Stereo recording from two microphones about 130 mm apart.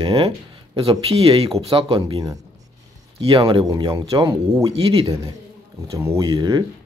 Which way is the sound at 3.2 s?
45° right (ahead or behind).